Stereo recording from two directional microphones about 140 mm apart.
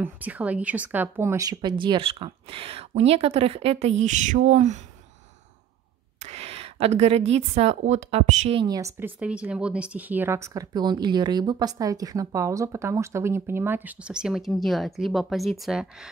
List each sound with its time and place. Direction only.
0.0 s speech: 10° right (ahead or behind); by 4.8 s 55° right (ahead or behind)
6.1 s a woman's voice: 50° right (ahead or behind)
8.5 s speech: 25° right (ahead or behind)
8.9 s speech: 10° right (ahead or behind)